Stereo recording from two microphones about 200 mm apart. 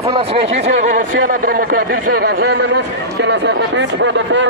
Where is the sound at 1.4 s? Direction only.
45° right (ahead or behind).